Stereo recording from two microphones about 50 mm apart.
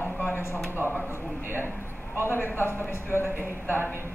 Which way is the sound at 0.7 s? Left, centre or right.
Left.